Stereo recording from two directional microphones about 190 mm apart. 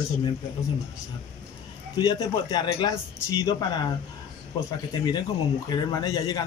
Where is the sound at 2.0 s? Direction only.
20° left (ahead or behind).